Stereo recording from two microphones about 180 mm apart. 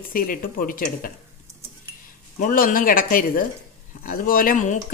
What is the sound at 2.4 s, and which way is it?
Speech, 50° left (ahead or behind).